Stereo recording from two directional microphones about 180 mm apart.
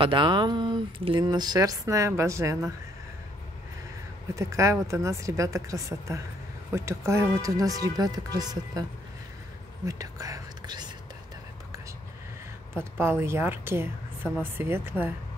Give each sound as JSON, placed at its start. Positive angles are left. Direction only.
{"t": 0.0, "sound": "speech", "side_deg": -25}
{"t": 4.4, "sound": "speech", "side_deg": -15}
{"t": 9.8, "sound": "whispering", "side_deg": -20}
{"t": 12.7, "sound": "speech", "side_deg": -15}